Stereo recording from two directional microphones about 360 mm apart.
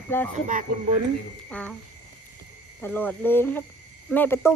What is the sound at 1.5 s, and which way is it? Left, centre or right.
Speech, centre.